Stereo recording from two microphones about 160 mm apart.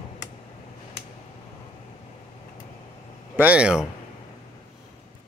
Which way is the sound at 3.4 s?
5° right (ahead or behind).